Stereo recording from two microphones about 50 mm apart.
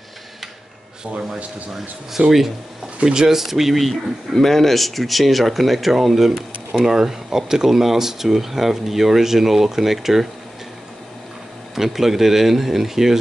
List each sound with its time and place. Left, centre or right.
2.2 s speech: right; by 10.2 s centre
11.7 s speech: centre